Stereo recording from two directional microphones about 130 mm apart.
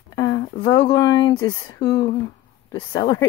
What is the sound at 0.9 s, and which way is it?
Speech, 35° left (ahead or behind).